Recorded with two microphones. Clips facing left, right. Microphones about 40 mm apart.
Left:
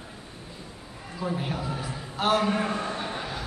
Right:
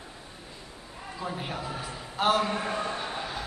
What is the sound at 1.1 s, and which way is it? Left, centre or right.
A man's voice, centre.